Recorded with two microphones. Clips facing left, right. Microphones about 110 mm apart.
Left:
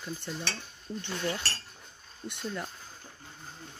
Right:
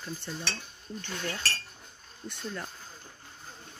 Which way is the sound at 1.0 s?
25° left (ahead or behind).